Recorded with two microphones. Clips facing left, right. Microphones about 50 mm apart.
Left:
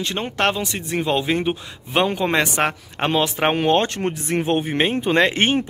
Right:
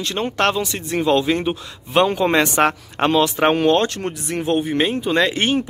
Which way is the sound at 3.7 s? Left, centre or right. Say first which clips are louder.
Even; left.